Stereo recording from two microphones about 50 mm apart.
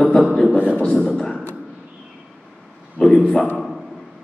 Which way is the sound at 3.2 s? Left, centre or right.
Left.